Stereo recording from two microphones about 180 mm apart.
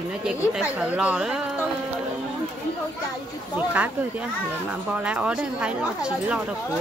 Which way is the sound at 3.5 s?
10° right (ahead or behind).